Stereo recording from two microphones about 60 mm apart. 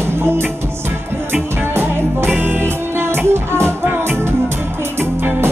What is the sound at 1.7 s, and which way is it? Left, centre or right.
Music, right.